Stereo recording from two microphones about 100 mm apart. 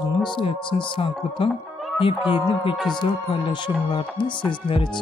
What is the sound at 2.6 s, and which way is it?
Speech, 55° left (ahead or behind).